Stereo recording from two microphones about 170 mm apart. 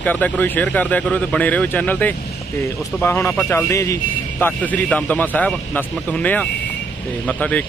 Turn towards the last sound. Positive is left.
turn(degrees=10)  # may be behind; listen again after turning